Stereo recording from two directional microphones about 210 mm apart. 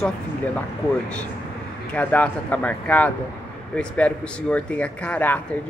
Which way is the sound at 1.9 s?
5° left (ahead or behind).